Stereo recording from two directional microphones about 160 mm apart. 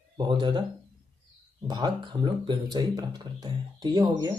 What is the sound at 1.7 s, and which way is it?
Speech, 30° right (ahead or behind).